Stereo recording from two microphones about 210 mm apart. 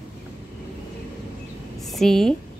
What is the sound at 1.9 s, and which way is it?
Speech, centre (ahead or behind).